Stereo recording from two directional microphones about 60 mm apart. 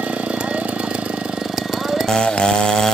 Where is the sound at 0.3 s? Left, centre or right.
Centre.